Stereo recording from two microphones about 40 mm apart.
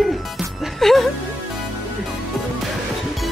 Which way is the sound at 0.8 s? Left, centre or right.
Centre.